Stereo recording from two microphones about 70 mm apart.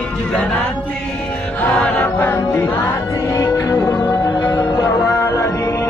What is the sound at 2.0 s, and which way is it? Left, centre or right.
A capella, left.